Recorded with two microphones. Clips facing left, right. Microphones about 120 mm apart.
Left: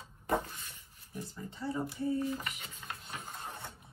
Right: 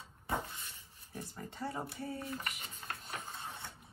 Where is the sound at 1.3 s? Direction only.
55° right (ahead or behind).